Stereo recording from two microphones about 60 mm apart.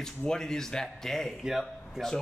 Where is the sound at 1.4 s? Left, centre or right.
Centre.